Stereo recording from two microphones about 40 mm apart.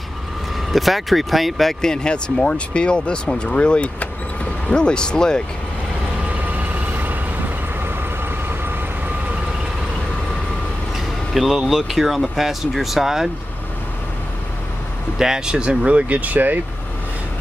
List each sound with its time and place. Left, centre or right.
0.7 s speech: centre
1.8 s speech: centre
6.2 s vehicle: right
11.3 s speech: centre
15.1 s speech: centre; by 16.5 s right